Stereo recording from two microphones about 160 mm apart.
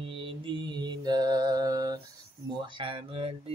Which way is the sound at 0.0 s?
35° right (ahead or behind).